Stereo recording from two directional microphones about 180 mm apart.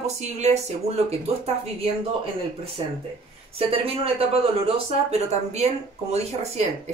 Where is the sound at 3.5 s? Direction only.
30° right (ahead or behind).